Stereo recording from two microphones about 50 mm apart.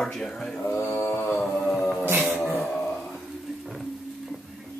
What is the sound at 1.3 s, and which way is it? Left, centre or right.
Music, centre.